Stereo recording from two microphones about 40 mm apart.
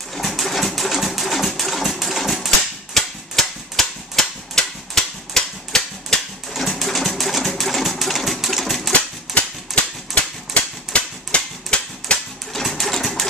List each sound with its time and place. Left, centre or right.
0.1 s a sound: centre
9.3 s typewriter: centre
10.1 s typewriter: left
12.5 s sewing machine: centre